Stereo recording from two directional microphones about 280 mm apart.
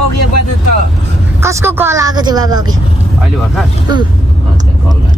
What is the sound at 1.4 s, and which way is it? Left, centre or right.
Speech, centre.